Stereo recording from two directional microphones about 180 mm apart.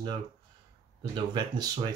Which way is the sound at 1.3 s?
20° right (ahead or behind).